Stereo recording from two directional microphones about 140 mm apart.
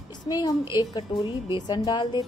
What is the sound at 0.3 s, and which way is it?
Speech, 30° left (ahead or behind).